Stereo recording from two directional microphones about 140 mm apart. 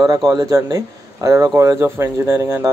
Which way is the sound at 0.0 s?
30° right (ahead or behind).